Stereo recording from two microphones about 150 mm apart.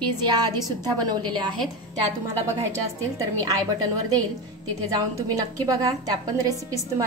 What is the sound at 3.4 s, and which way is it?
A woman's voice, 25° right (ahead or behind).